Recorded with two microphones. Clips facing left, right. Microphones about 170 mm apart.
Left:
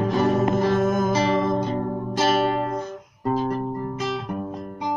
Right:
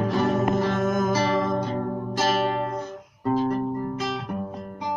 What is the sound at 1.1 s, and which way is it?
Music, 20° left (ahead or behind).